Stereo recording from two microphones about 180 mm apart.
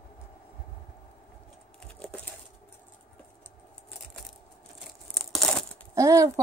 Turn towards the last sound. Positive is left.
turn(degrees=-15)  # may be behind; listen again after turning